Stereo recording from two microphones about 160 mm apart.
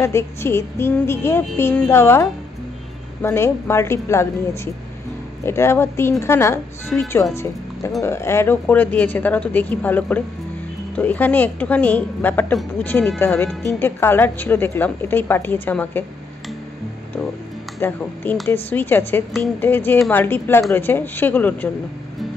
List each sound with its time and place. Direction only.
0.0 s a woman's voice: 15° left (ahead or behind)
5.4 s a woman's voice: 15° left (ahead or behind)
8.0 s a woman's voice: 15° left (ahead or behind)
17.7 s a woman's voice: 15° left (ahead or behind)